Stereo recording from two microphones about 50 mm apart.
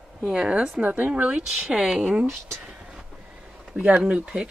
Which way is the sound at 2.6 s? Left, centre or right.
Centre.